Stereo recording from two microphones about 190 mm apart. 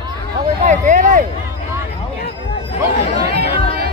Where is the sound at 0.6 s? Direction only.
40° right (ahead or behind).